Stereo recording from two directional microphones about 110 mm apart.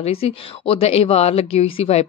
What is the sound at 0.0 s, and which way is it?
Speech, 65° left (ahead or behind).